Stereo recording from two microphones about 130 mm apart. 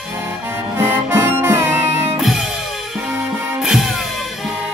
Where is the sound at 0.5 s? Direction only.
20° right (ahead or behind).